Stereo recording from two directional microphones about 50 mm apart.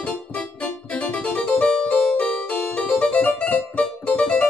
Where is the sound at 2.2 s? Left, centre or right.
Left.